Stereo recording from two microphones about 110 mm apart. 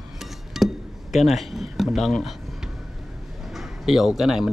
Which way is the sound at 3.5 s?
Centre (ahead or behind).